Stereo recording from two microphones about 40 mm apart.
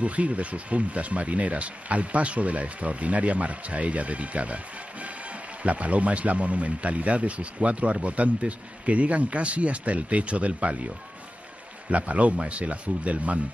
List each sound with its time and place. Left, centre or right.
0.0 s speech: right
5.6 s speech: right
11.9 s speech: right